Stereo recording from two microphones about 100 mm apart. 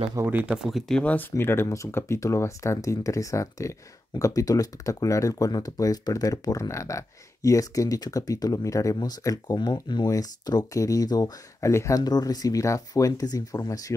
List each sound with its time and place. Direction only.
0.3 s speech: 20° right (ahead or behind)
0.7 s speech: 5° left (ahead or behind); by 9.6 s 35° left (ahead or behind)
9.6 s speech: 50° left (ahead or behind)